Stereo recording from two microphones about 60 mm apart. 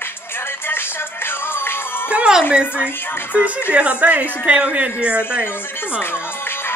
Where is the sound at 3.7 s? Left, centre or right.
Right.